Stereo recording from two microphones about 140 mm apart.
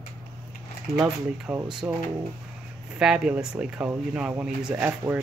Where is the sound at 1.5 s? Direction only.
20° right (ahead or behind).